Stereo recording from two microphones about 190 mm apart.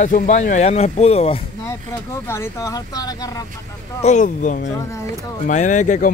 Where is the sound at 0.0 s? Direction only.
40° left (ahead or behind).